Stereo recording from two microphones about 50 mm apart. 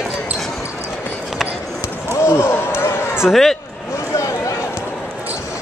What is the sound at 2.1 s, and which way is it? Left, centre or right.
Speech, left.